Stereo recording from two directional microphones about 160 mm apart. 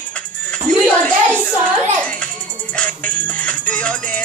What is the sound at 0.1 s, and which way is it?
Music, 5° left (ahead or behind).